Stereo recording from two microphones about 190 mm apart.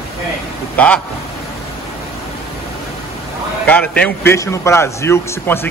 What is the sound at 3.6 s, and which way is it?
A man's voice, 5° left (ahead or behind).